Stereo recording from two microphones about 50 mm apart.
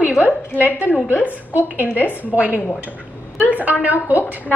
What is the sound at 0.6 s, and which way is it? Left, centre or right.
A woman's voice, right.